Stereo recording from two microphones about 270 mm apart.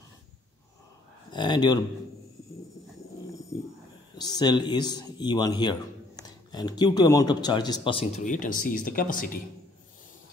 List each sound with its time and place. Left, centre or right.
1.3 s a man's voice: centre
4.2 s a man's voice: centre; by 9.4 s left